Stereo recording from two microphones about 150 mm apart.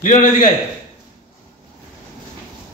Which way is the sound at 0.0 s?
55° left (ahead or behind).